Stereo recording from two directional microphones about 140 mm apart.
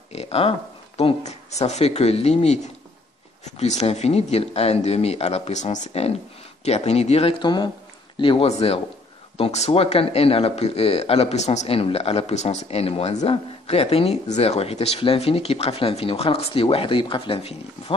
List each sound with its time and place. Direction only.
0.1 s speech: 45° left (ahead or behind)